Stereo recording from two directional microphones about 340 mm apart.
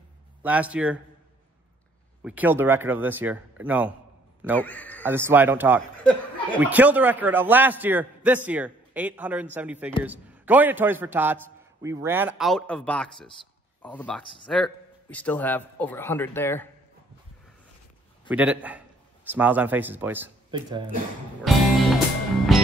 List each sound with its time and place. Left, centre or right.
0.4 s a man's voice: centre
2.2 s a man's voice: centre
5.0 s a man's voice: centre
18.3 s a man's voice: centre
21.4 s music: centre